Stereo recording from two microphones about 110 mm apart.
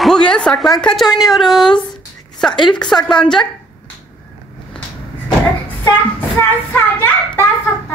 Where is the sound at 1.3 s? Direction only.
Centre (ahead or behind).